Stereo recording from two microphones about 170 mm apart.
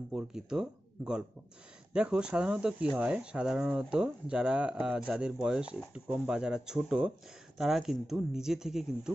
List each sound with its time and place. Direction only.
0.1 s speech: 5° right (ahead or behind)